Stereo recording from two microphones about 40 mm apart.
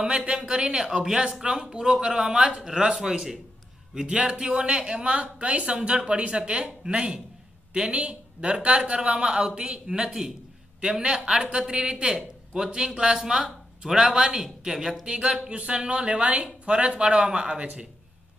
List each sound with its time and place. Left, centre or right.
0.3 s speech: right
5.4 s speech: right